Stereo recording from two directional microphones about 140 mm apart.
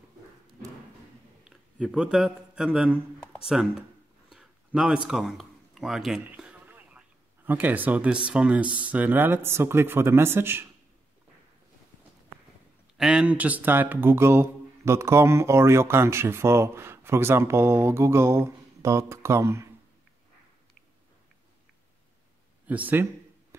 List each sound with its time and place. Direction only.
1.4 s speech: 5° right (ahead or behind)
4.3 s a sound: 5° right (ahead or behind)
8.7 s speech: 10° right (ahead or behind)
12.9 s speech: 5° right (ahead or behind); by 19.7 s 20° right (ahead or behind)
22.7 s speech: 10° right (ahead or behind)